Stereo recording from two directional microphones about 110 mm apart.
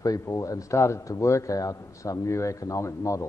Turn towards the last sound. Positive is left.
turn(degrees=30)  # may be behind; listen again after turning